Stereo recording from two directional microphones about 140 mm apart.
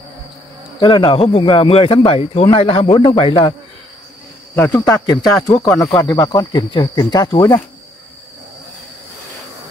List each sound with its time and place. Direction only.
0.7 s speech: 35° left (ahead or behind)
4.6 s speech: 20° left (ahead or behind)